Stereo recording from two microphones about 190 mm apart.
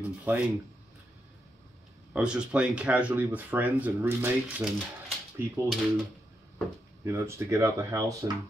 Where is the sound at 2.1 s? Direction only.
5° right (ahead or behind).